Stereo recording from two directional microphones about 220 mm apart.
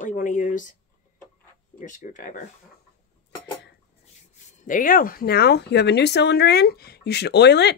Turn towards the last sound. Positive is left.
turn(degrees=50)  # may be behind; listen again after turning